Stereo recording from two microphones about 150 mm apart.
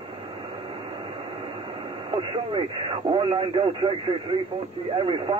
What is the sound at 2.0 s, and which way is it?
Speech, 35° right (ahead or behind).